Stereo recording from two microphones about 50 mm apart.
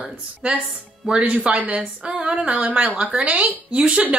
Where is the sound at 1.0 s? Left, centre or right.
Centre.